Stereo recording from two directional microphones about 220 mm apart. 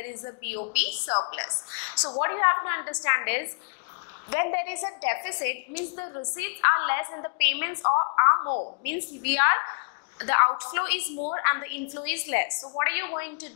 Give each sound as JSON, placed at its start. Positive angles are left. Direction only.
{"t": 0.0, "sound": "a woman's voice", "side_deg": 15}
{"t": 1.0, "sound": "a woman's voice", "side_deg": 25}
{"t": 7.8, "sound": "a woman's voice", "side_deg": 25}
{"t": 8.8, "sound": "a woman's voice", "side_deg": 10}